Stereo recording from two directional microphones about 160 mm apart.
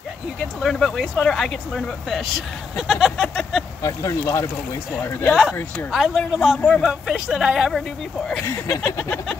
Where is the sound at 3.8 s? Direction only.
20° left (ahead or behind).